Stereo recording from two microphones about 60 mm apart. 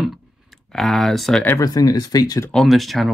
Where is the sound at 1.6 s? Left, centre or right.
Left.